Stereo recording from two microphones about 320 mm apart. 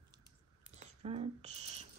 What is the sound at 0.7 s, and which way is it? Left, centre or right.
Rodents, centre.